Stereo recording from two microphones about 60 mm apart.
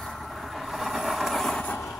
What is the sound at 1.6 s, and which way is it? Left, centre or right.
Vehicle, left.